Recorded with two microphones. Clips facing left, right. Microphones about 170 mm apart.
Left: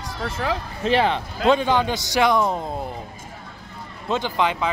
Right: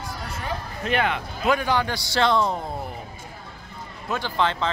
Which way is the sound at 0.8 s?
30° left (ahead or behind).